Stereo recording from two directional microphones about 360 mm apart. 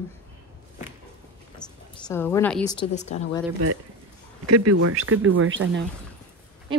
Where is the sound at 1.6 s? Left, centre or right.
Centre.